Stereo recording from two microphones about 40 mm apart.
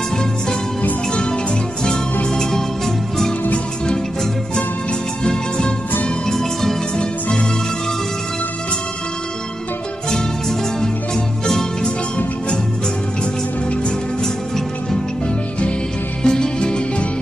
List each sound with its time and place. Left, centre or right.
1.1 s music: left
7.0 s music: left
11.4 s music: centre
16.2 s music: centre